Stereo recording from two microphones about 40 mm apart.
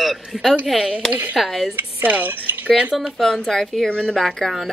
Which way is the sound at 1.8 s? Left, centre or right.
Right.